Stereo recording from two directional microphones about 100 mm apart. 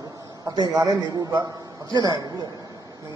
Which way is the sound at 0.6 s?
40° right (ahead or behind).